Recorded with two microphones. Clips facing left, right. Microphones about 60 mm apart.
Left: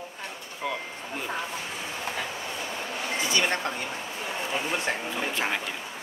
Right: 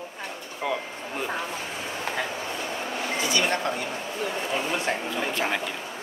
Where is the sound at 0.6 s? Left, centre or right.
Centre.